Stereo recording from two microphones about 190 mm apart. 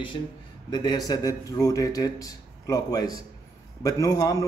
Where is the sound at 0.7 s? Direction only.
20° left (ahead or behind).